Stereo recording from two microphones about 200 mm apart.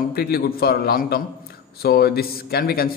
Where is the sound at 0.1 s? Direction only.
50° left (ahead or behind).